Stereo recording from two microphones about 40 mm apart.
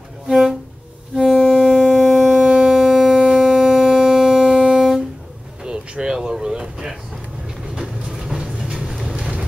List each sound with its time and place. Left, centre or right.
0.3 s music: centre
5.6 s a sound: right
7.8 s train: centre
8.8 s vehicle: centre